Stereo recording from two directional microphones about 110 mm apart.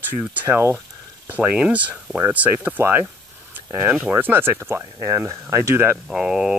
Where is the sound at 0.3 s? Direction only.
20° right (ahead or behind).